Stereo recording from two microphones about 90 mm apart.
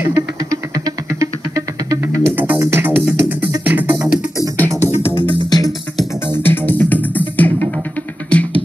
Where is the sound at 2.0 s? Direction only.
20° right (ahead or behind).